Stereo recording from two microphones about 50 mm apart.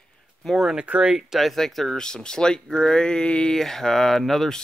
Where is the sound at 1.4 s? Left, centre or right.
Centre.